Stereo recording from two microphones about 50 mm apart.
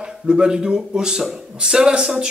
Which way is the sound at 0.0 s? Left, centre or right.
Centre.